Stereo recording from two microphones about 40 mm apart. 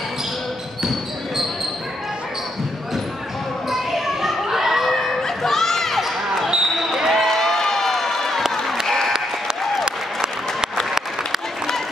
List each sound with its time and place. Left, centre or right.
0.8 s basketball bounce: centre
3.7 s a sound: centre
4.9 s crowd: centre
6.5 s basketball bounce: centre
8.8 s applause: centre
9.8 s applause: centre